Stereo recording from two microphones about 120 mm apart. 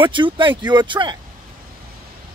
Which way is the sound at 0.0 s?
45° right (ahead or behind).